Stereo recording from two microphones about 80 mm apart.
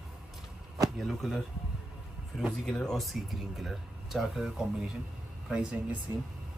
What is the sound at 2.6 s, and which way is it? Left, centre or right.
Speech, centre.